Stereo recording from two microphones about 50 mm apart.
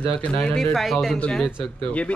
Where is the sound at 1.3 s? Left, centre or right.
Centre.